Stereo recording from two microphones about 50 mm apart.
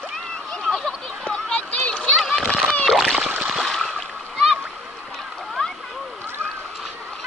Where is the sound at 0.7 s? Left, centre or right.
Centre.